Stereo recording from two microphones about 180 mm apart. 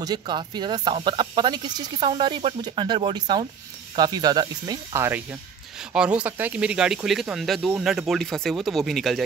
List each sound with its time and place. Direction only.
0.0 s speech: 25° right (ahead or behind); by 9.2 s centre (ahead or behind)